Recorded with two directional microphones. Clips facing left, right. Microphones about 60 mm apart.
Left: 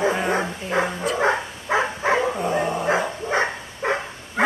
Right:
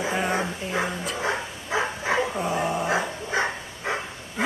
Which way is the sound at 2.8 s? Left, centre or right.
Left.